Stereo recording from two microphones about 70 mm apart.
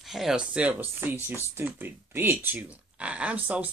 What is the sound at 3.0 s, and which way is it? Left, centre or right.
Speech, centre.